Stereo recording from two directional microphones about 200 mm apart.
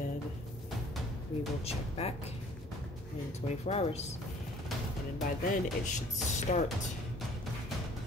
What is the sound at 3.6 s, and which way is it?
Speech, 35° left (ahead or behind).